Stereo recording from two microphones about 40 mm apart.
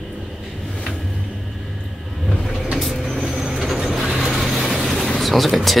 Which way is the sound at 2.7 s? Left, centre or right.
Centre.